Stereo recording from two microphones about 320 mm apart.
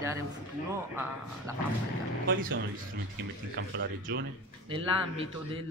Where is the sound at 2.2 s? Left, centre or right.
Right.